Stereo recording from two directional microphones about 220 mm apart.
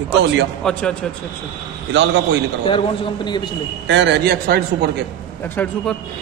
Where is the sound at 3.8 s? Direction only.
55° right (ahead or behind).